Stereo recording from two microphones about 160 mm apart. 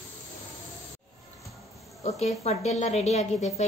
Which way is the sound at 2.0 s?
40° left (ahead or behind).